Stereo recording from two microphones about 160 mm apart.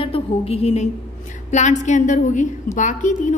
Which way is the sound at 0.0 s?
35° left (ahead or behind).